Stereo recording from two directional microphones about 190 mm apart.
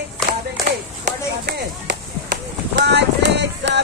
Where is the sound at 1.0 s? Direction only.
60° right (ahead or behind).